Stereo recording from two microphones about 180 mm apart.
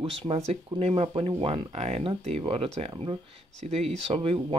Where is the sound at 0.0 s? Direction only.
35° right (ahead or behind).